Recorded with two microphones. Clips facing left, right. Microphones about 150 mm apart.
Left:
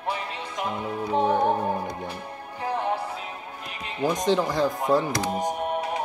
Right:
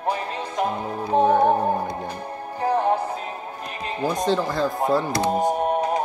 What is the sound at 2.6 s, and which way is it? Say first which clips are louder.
Music: right 6 dB; 40° right (ahead or behind).